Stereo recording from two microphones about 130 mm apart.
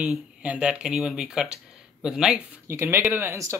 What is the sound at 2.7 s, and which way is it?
Speech, 15° right (ahead or behind).